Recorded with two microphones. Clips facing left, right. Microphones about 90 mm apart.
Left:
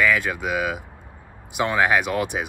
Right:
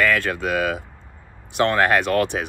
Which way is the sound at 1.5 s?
10° left (ahead or behind).